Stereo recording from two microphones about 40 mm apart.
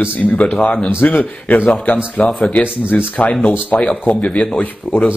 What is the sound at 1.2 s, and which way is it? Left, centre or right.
Speech, left.